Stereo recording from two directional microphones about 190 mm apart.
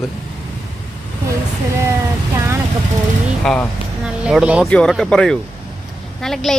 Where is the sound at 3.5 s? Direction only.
Centre (ahead or behind).